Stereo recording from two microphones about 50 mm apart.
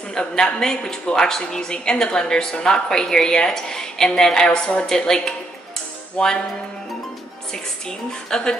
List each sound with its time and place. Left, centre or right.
0.1 s a woman's voice: centre
6.1 s music: centre
8.1 s a woman's voice: centre